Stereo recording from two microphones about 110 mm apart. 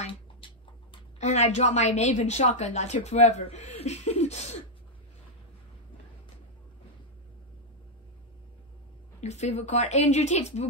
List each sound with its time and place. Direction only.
1.2 s a woman's voice: 90° left
9.2 s a woman's voice: 90° left